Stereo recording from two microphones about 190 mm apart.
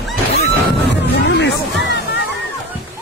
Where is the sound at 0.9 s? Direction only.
65° left (ahead or behind).